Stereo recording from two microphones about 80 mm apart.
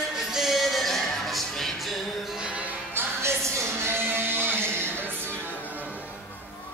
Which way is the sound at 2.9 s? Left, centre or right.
Right.